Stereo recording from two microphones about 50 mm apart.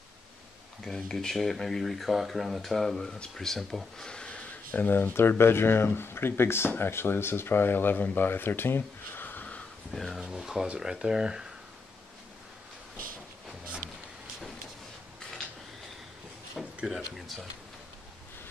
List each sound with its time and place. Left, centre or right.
0.8 s speech: centre
4.1 s a sound: left
4.6 s speech: left
9.9 s speech: centre
10.2 s speech: centre
16.6 s a sound: centre